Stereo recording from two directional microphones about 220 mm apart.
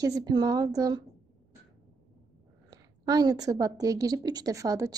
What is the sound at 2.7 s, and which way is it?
A woman's voice, 15° right (ahead or behind).